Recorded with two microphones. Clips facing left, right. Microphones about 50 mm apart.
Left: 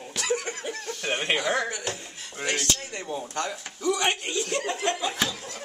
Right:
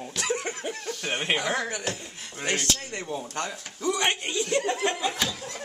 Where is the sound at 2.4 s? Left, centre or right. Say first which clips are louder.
Even; centre.